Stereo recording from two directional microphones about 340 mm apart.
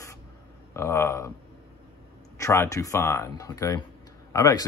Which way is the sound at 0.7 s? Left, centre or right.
Centre.